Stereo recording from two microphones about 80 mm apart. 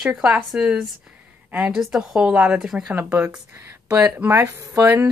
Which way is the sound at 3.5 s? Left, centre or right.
Right.